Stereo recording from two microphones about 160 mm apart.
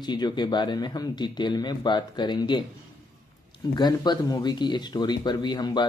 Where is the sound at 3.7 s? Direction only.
25° left (ahead or behind).